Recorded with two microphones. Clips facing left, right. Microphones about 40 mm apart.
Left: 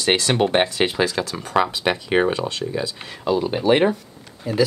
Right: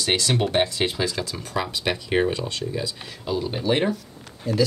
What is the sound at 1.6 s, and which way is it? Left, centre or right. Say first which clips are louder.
Speech: left 4 dB; centre.